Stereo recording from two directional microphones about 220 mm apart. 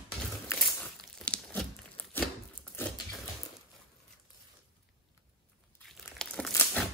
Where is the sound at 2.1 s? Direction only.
5° left (ahead or behind).